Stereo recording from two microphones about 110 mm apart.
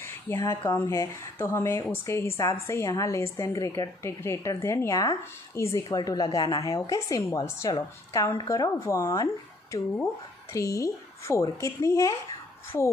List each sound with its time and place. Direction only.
0.0 s a woman's voice: 25° left (ahead or behind)